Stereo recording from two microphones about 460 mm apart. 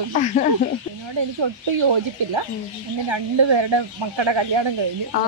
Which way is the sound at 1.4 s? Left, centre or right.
Right.